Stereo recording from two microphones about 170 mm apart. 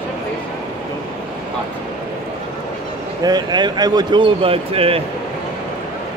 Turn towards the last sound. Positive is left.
turn(degrees=-35)  # may be behind; listen again after turning